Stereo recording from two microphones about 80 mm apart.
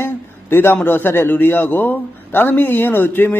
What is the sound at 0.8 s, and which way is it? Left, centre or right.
A man's voice, left.